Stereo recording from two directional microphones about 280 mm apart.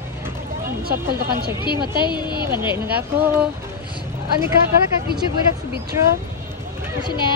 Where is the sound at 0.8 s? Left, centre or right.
Right.